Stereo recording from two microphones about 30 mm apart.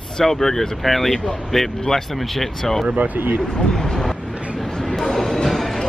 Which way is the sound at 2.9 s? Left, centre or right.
Right.